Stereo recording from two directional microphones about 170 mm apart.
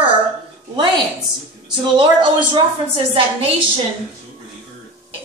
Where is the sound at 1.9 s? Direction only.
30° right (ahead or behind).